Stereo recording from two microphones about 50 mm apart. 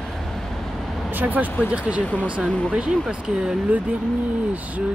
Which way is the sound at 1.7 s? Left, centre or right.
Right.